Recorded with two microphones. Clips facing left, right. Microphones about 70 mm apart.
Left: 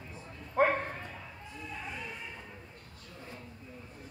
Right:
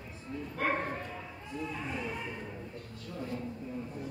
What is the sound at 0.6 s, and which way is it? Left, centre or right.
Bow-wow, left.